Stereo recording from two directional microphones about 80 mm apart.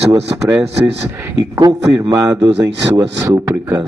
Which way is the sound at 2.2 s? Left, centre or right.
Right.